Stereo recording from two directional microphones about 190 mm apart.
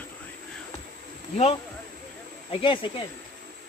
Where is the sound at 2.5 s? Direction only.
25° left (ahead or behind).